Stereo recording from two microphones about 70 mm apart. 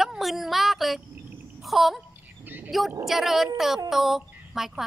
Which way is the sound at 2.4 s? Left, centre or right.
Right.